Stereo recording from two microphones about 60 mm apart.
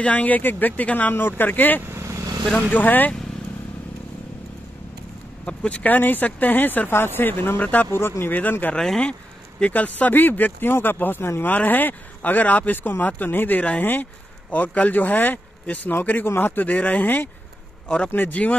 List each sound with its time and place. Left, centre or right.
0.0 s speech: left
1.8 s vehicle: right
2.7 s speech: left
5.4 s speech: centre
5.9 s speech: left
8.0 s speech: left
8.7 s speech: centre
9.6 s speech: left
17.8 s speech: centre